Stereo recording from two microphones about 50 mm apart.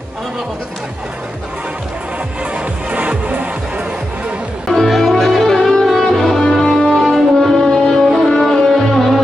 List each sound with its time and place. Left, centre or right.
2.5 s music: right
4.6 s music: centre
6.6 s music: centre
6.9 s music: centre